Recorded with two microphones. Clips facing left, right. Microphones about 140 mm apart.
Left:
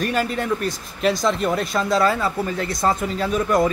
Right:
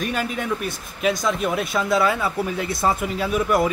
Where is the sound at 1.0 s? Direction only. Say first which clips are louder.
Left 2 dB; 5° right (ahead or behind).